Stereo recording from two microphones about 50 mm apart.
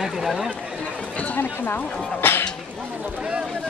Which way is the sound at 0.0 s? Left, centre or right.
Centre.